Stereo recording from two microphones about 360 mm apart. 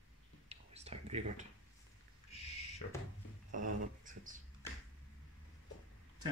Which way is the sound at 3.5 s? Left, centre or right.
Right.